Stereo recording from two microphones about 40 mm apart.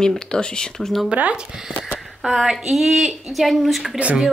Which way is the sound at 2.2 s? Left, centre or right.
Centre.